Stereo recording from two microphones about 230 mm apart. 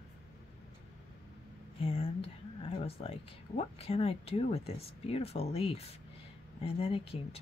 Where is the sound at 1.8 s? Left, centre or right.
Left.